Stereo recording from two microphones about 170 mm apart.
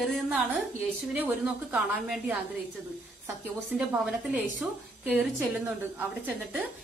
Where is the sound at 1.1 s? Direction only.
10° right (ahead or behind).